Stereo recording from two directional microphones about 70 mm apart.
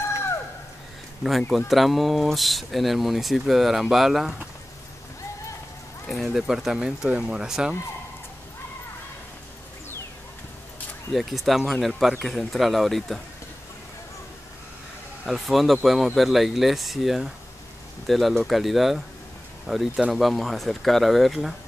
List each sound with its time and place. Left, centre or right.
1.2 s speech: centre
6.0 s speech: centre
11.1 s speech: centre
15.2 s speech: centre